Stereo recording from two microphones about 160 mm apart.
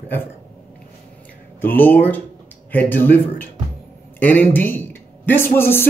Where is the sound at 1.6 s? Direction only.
10° left (ahead or behind).